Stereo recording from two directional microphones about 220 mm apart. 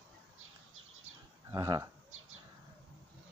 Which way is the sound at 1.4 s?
15° right (ahead or behind).